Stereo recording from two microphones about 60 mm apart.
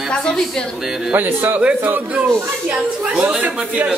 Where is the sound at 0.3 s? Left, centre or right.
Centre.